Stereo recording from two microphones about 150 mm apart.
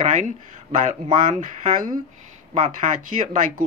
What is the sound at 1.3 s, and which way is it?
Speech, 55° right (ahead or behind).